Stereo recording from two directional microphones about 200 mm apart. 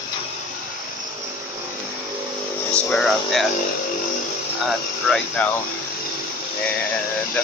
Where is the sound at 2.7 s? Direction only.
5° left (ahead or behind).